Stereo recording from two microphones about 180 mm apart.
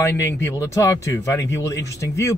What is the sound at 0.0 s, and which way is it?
A man's voice, 15° left (ahead or behind).